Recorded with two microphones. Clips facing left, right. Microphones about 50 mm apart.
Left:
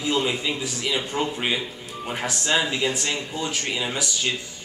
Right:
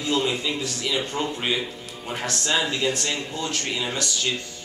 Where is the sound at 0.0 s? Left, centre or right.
Centre.